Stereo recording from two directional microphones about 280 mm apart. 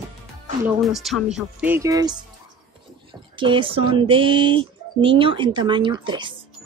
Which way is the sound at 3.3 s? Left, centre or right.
Centre.